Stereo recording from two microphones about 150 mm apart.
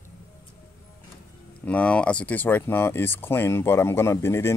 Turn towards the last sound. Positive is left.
turn(degrees=15)  # may be behind; listen again after turning